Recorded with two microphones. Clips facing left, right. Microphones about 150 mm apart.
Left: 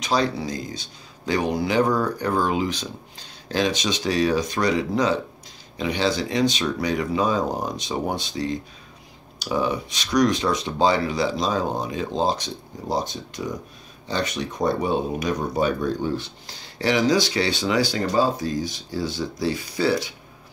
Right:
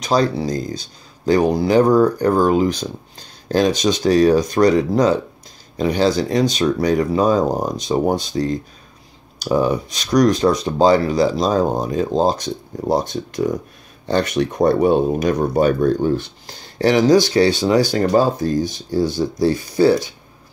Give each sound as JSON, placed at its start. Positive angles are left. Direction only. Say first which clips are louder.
{"t": 0.0, "sound": "speech", "louder": "right 5 dB", "side_deg": -40}